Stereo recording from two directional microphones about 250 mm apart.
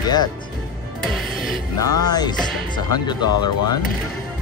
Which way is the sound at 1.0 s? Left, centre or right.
Centre.